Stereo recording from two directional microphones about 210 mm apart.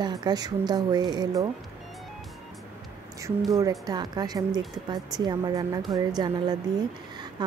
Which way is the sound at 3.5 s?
15° right (ahead or behind).